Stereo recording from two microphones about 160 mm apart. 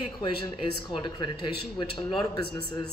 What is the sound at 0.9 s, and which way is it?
Speech, 30° left (ahead or behind).